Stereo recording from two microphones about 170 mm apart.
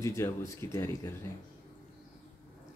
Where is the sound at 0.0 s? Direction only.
15° left (ahead or behind).